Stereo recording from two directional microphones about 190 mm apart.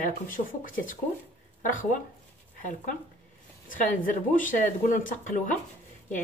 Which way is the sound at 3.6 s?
45° left (ahead or behind).